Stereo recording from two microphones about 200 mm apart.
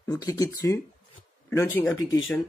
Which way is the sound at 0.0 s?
15° left (ahead or behind).